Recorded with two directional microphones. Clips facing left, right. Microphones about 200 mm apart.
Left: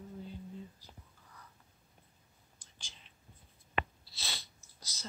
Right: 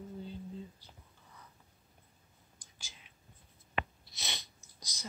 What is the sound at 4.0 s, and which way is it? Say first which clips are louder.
Sneeze: right 1 dB; 20° right (ahead or behind).